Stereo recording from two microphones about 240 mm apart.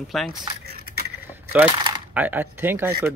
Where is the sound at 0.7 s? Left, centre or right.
Right.